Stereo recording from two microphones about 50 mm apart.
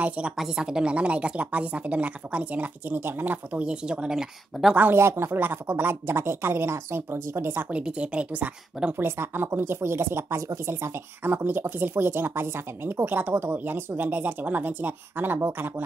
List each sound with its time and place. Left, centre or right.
0.0 s speech: right
0.4 s speech: centre; by 3.0 s right
3.0 s speech: right
3.5 s speech: centre
4.9 s speech: right
7.7 s speech: right
8.9 s speech: right